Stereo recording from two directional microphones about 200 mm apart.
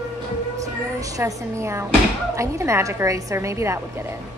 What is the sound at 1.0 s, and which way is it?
A woman's voice, 15° right (ahead or behind).